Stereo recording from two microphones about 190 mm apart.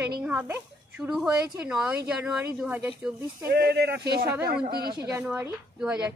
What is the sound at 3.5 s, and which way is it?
Speech, 60° right (ahead or behind).